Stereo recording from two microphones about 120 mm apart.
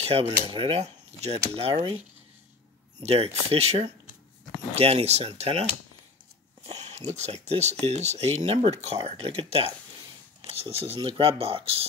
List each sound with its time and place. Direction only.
0.0 s cutlery: 45° right (ahead or behind)
0.5 s speech: 50° right (ahead or behind)
3.0 s speech: 60° right (ahead or behind)
6.6 s speech: 65° right (ahead or behind); by 11.8 s 50° right (ahead or behind)